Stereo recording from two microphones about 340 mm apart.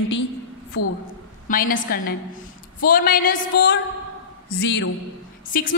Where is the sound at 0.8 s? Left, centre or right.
Left.